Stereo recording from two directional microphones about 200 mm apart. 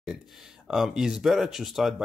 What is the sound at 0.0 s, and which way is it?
Speech, centre (ahead or behind).